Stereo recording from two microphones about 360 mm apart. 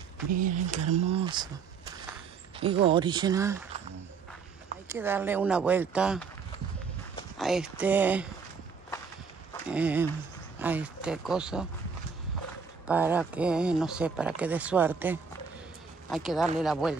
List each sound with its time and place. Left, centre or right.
0.3 s speech: right
2.6 s speech: centre
4.8 s speech: centre
7.3 s speech: centre
9.7 s speech: centre
12.8 s speech: centre